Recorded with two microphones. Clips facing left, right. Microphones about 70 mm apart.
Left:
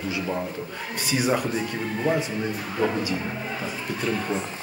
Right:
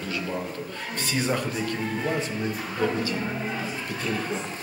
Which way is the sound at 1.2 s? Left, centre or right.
Centre.